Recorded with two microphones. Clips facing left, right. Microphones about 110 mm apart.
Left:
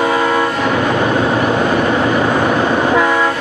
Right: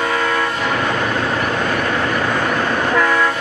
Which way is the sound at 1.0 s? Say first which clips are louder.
Left 5 dB; 15° left (ahead or behind).